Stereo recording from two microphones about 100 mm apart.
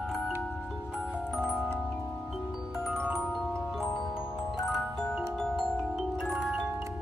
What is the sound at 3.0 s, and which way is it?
Glockenspiel, 10° right (ahead or behind).